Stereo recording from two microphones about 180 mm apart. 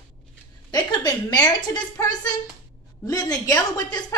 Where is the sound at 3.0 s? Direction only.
20° left (ahead or behind).